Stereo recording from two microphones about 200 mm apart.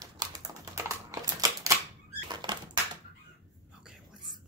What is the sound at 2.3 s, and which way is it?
Patter, 20° right (ahead or behind).